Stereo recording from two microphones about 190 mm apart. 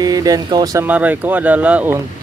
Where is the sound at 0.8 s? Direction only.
10° right (ahead or behind).